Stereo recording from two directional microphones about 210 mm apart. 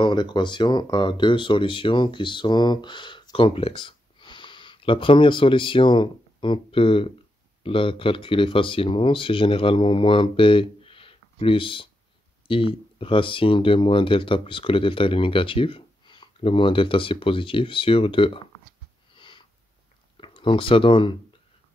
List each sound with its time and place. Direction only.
0.0 s speech: 20° left (ahead or behind)
19.1 s a sound: 25° left (ahead or behind)
20.2 s speech: 25° left (ahead or behind)